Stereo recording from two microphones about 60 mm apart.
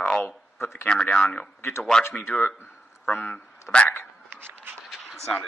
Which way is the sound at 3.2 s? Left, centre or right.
Left.